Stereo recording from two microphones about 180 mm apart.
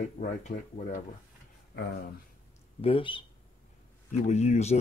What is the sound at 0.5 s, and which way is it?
Speech, 45° left (ahead or behind).